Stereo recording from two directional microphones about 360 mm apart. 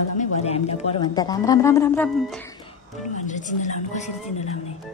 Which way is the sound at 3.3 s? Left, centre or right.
Left.